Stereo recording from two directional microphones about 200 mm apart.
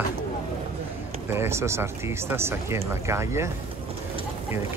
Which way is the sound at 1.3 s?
10° right (ahead or behind).